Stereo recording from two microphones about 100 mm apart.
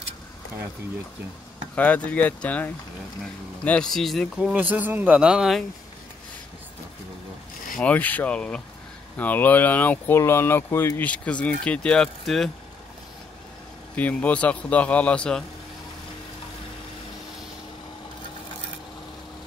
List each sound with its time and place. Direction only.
1.8 s a man's voice: 15° left (ahead or behind)
4.4 s speech: 15° right (ahead or behind)
7.8 s a man's voice: 15° left (ahead or behind)
11.1 s a man's voice: 15° left (ahead or behind)
13.9 s a man's voice: 15° left (ahead or behind)